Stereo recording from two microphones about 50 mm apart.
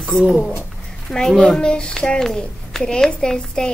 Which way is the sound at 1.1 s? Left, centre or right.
Centre.